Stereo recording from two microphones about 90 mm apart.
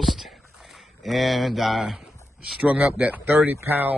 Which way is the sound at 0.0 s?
Centre (ahead or behind).